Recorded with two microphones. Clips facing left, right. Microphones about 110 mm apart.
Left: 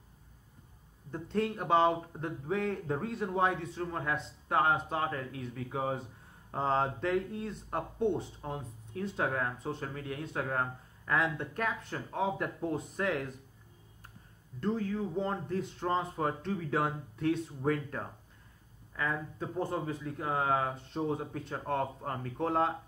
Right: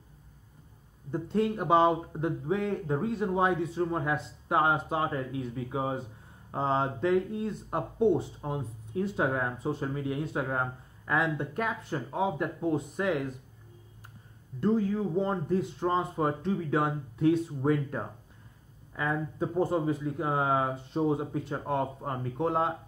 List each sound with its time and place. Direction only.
1.1 s speech: 10° right (ahead or behind)
14.6 s speech: 15° right (ahead or behind)